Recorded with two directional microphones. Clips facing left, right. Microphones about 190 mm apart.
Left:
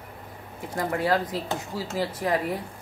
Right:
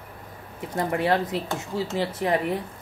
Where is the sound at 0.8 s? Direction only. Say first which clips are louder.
Right 1 dB; 25° right (ahead or behind).